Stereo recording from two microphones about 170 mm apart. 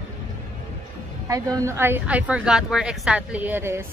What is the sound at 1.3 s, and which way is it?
A woman's voice, 20° right (ahead or behind).